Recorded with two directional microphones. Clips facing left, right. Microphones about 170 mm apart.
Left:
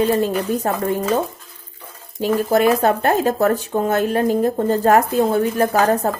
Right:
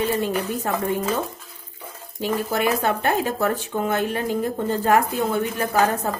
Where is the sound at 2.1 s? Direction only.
40° left (ahead or behind).